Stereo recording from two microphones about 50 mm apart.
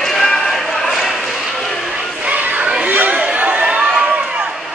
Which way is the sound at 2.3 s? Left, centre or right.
Right.